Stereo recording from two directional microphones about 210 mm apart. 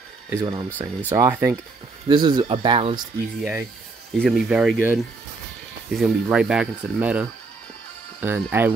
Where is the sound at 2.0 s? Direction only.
20° right (ahead or behind).